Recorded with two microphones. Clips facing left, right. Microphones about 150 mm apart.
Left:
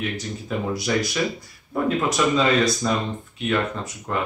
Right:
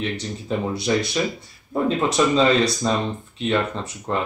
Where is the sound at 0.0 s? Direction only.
30° right (ahead or behind).